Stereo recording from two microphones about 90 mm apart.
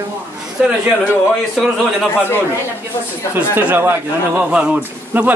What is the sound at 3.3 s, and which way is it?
Speech, 25° right (ahead or behind).